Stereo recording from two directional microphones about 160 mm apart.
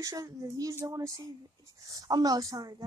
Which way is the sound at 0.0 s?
20° right (ahead or behind).